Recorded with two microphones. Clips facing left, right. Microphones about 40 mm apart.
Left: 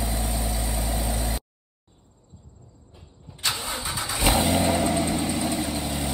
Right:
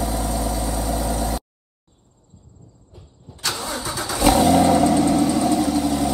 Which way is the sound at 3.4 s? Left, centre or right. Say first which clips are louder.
Right 3 dB; left.